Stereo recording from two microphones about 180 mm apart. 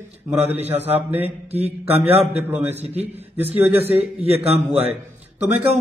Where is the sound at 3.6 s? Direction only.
10° right (ahead or behind).